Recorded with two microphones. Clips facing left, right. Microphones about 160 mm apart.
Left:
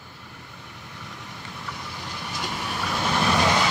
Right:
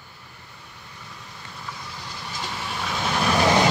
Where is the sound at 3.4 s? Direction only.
30° right (ahead or behind).